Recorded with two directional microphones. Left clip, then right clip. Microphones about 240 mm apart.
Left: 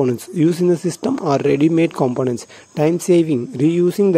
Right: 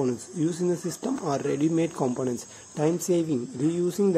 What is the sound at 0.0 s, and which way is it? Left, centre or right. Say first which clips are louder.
Speech: left 10 dB; left.